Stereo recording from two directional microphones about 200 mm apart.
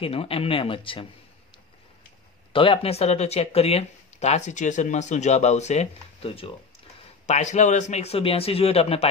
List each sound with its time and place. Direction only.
0.0 s speech: 30° left (ahead or behind)
2.5 s speech: 25° left (ahead or behind)